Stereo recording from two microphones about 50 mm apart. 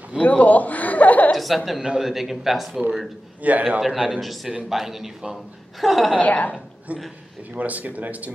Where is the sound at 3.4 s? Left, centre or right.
Right.